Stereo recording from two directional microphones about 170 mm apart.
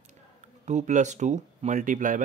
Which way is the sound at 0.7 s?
45° right (ahead or behind).